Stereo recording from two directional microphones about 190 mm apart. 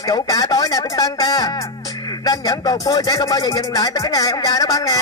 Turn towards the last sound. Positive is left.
turn(degrees=20)  # may be behind; listen again after turning